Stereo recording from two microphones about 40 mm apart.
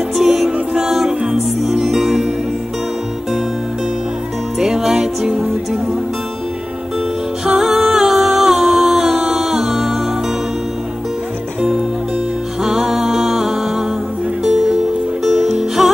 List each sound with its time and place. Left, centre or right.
0.3 s music: right
4.6 s music: centre
7.4 s a capella: centre
12.6 s music: centre